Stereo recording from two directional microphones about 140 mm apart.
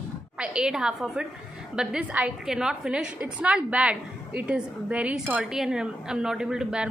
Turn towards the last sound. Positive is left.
turn(degrees=-5)  # may be behind; listen again after turning